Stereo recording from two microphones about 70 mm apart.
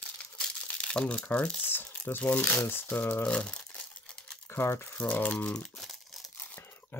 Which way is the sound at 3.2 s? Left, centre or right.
Centre.